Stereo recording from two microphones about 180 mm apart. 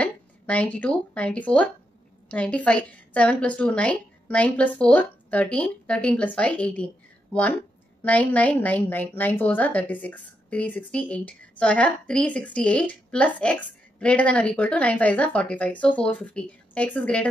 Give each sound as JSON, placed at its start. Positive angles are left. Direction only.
{"t": 0.0, "sound": "a woman's voice", "side_deg": 10}